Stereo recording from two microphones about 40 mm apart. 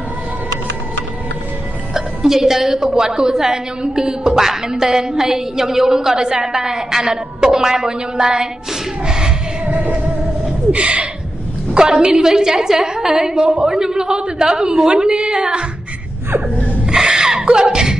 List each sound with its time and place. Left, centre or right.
2.0 s a woman's voice: centre
9.0 s music: centre
10.7 s speech: right
11.7 s a woman's voice: centre
16.8 s a sound: centre
17.5 s speech: right